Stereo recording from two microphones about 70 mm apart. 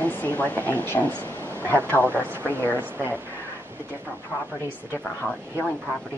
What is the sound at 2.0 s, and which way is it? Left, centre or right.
Speech, right.